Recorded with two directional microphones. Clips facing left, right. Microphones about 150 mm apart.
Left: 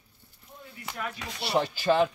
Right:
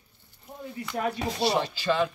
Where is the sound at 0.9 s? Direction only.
35° right (ahead or behind).